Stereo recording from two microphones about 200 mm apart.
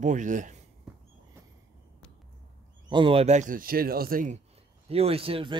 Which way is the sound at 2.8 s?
25° right (ahead or behind).